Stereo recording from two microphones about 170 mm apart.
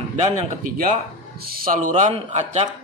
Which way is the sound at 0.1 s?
45° right (ahead or behind).